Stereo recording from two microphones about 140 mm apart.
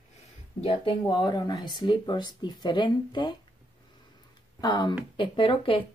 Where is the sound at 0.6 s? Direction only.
40° left (ahead or behind).